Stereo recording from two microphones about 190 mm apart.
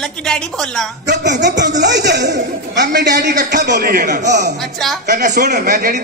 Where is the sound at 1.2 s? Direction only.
65° right (ahead or behind); by 4.3 s 45° right (ahead or behind).